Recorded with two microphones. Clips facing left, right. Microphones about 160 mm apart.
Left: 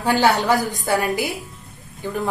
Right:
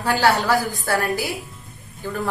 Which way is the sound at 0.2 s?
20° left (ahead or behind).